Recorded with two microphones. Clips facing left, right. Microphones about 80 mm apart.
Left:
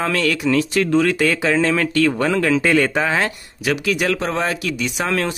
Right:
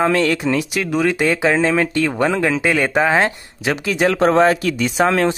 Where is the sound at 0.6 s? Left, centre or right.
Centre.